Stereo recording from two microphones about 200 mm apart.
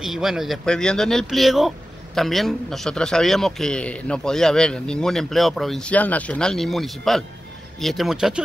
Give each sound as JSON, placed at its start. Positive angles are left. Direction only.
{"t": 0.0, "sound": "speech", "side_deg": 0}